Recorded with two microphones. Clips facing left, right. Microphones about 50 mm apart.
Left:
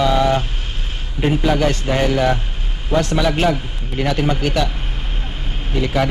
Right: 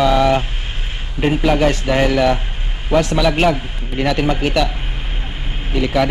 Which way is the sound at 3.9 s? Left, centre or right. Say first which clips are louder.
Right 2 dB; right.